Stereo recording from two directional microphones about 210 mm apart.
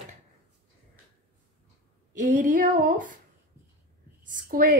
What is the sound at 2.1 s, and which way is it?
Speech, 40° right (ahead or behind).